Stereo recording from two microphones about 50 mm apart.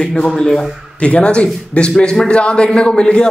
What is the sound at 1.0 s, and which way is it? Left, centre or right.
A man's voice, left.